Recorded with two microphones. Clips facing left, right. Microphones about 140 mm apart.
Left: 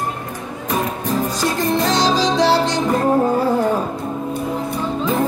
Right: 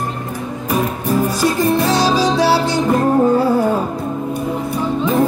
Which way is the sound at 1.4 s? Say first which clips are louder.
Right 3 dB; 10° right (ahead or behind).